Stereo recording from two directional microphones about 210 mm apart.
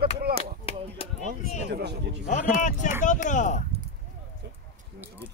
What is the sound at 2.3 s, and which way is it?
Speech, 35° left (ahead or behind).